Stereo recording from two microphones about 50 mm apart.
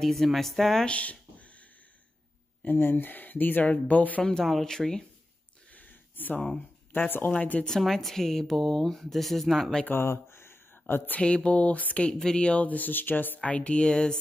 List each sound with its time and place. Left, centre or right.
0.0 s speech: centre
0.8 s a sound: left
2.6 s speech: left
3.6 s speech: left
4.2 s speech: centre
5.7 s a sound: left
7.1 s speech: left
7.3 s speech: left
7.8 s speech: centre
9.9 s a sound: left
11.1 s speech: left
12.1 s speech: centre
12.4 s speech: left
13.4 s speech: left